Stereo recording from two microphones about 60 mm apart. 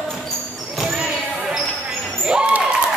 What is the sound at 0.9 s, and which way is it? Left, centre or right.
Basketball bounce, centre.